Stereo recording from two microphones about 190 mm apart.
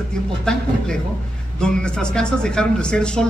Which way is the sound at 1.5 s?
5° left (ahead or behind).